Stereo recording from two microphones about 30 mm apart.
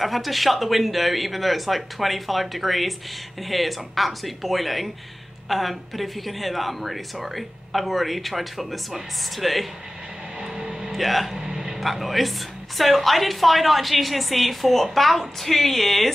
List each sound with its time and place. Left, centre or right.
0.0 s a woman's voice: centre
10.4 s music: centre
10.9 s speech: centre
11.3 s a sound: centre
11.8 s a woman's voice: centre